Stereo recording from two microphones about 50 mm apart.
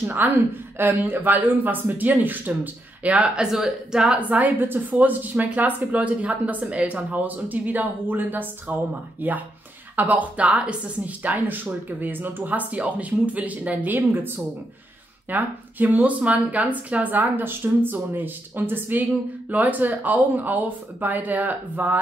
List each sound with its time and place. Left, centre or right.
0.2 s speech: right
3.3 s a woman's voice: centre
4.3 s speech: right
11.2 s speech: right